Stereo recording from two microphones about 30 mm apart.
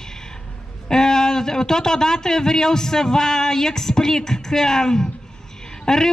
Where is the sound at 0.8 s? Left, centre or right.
Left.